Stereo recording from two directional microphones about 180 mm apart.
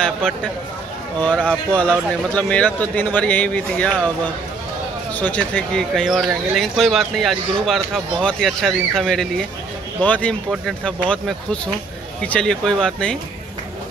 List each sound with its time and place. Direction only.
0.0 s speech: 5° left (ahead or behind)
1.4 s speech: 5° right (ahead or behind)
1.8 s a man's voice: 5° left (ahead or behind)